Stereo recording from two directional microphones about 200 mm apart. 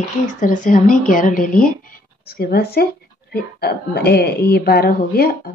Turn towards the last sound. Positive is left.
turn(degrees=50)  # may be behind; listen again after turning